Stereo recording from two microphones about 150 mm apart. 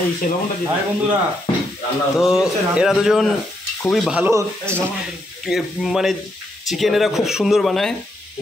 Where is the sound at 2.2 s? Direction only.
5° right (ahead or behind).